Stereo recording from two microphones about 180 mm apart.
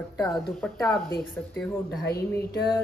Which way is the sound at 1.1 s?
10° left (ahead or behind).